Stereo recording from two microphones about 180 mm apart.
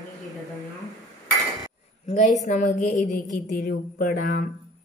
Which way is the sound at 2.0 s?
45° left (ahead or behind).